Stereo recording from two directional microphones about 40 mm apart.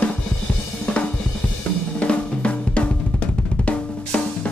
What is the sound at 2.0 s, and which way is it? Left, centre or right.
Drum, left.